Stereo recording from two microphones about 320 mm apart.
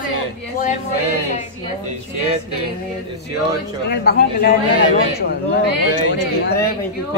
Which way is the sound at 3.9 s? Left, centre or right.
Left.